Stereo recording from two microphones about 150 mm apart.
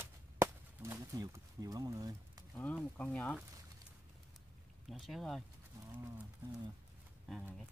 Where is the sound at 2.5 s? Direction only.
10° left (ahead or behind).